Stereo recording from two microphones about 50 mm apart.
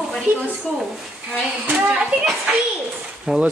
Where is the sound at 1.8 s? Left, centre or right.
Centre.